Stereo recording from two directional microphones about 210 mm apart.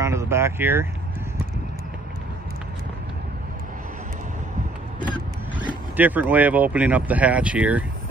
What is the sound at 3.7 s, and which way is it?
Vehicle, 40° right (ahead or behind).